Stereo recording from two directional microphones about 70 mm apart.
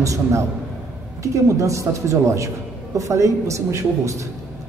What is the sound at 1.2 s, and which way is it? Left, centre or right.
A woman's voice, right.